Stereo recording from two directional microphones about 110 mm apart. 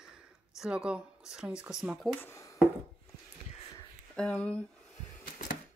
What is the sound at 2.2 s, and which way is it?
Speech, 25° left (ahead or behind).